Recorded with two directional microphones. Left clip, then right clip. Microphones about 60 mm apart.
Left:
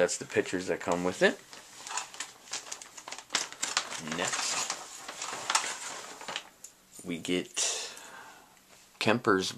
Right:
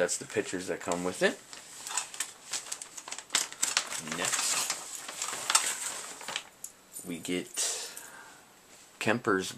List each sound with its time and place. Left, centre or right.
0.0 s speech: left
1.9 s a sound: centre
2.7 s crumpling: centre
7.1 s cutlery: left
8.9 s speech: left